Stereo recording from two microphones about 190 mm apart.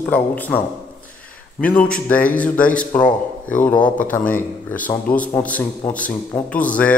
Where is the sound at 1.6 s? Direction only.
5° left (ahead or behind).